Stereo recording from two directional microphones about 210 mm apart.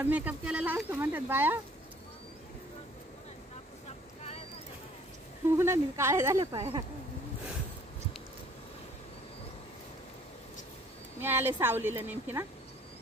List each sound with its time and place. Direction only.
0.0 s speech: 5° right (ahead or behind)
5.6 s speech: 10° right (ahead or behind)
6.4 s speech: 25° right (ahead or behind)
11.1 s speech: 10° right (ahead or behind)